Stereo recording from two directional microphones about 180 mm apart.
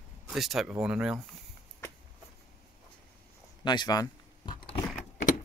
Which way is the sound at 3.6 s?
25° left (ahead or behind).